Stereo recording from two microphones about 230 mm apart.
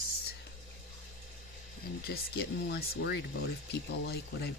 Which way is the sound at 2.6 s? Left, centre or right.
Left.